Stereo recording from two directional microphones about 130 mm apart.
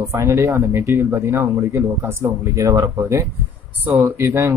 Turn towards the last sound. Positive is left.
turn(degrees=-20)  # may be behind; listen again after turning